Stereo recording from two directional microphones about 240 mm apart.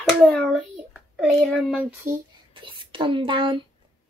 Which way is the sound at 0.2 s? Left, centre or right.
Centre.